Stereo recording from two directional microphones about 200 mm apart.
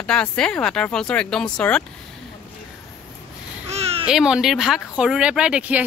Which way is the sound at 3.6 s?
30° right (ahead or behind).